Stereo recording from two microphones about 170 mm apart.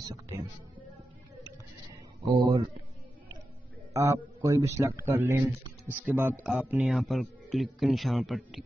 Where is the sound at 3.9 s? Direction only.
15° right (ahead or behind); by 8.6 s centre (ahead or behind).